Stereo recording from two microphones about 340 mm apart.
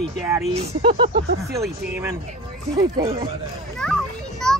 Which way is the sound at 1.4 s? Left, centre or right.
Centre.